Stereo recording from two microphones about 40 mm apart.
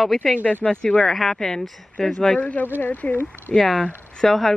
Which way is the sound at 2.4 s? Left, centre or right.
Left.